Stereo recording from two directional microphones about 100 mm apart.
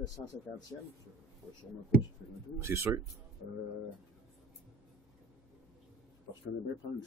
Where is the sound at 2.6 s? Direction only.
25° right (ahead or behind).